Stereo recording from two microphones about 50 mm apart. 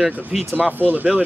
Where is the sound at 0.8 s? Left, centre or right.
Right.